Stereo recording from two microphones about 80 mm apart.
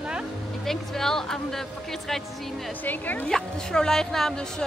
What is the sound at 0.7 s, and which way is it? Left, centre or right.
Speech, centre.